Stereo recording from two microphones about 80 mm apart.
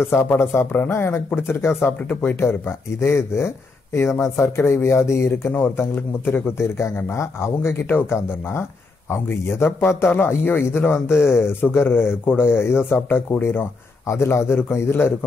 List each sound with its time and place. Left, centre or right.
0.0 s speech: left
5.5 s speech: left